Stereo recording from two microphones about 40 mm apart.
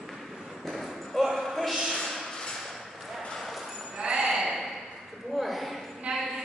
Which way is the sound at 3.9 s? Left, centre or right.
Centre.